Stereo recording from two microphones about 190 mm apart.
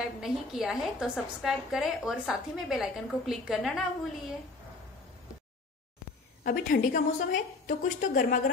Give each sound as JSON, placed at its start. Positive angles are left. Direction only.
{"t": 0.0, "sound": "a woman's voice", "side_deg": 0}
{"t": 6.4, "sound": "a woman's voice", "side_deg": 50}